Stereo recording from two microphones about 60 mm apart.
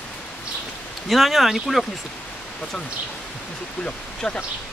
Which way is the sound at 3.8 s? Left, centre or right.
Centre.